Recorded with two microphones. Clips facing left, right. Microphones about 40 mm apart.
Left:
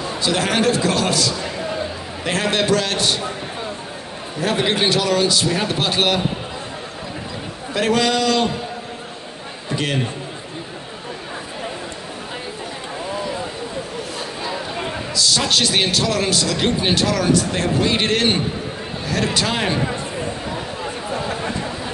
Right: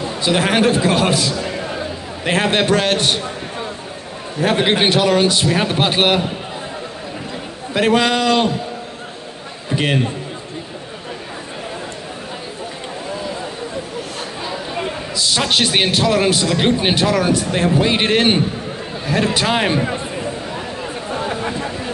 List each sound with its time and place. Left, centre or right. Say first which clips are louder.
0.2 s a man's voice: right 3 dB; right
4.4 s a man's voice: right 4 dB; right
7.7 s a man's voice: right 3 dB; right
14.4 s chatter: right 2 dB; centre
15.1 s a man's voice: right 1 dB; right